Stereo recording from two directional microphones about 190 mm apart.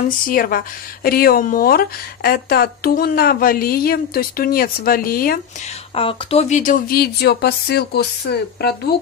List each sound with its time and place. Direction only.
0.3 s speech: 50° left (ahead or behind)
5.9 s speech: 30° left (ahead or behind); by 8.9 s 55° left (ahead or behind)